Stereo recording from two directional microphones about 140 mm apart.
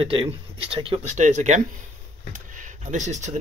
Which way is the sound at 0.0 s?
40° right (ahead or behind).